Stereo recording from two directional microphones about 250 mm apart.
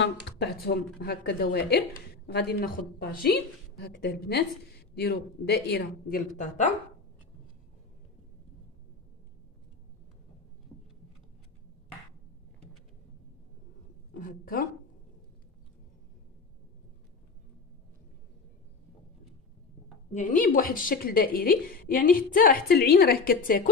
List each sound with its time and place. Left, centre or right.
0.0 s a woman's voice: left
14.1 s a woman's voice: left
20.1 s a woman's voice: left